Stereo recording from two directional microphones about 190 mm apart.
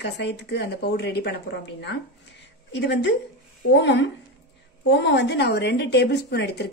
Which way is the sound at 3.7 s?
70° left (ahead or behind).